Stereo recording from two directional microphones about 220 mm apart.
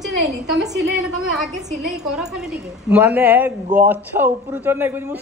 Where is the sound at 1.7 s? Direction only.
Centre (ahead or behind).